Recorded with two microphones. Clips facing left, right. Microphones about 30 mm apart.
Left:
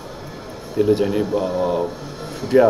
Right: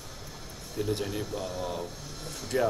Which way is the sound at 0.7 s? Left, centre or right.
Left.